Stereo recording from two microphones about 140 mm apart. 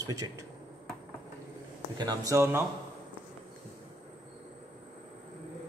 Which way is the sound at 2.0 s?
25° right (ahead or behind).